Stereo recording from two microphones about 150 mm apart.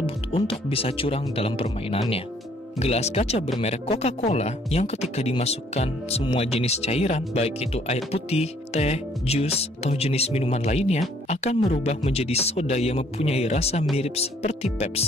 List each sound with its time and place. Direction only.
0.0 s speech: 40° left (ahead or behind)